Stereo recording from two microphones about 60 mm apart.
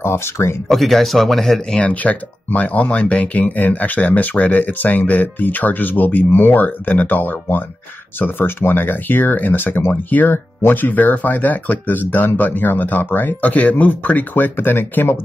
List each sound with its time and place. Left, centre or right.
0.0 s speech: left
0.7 s speech: centre
1.8 s speech: left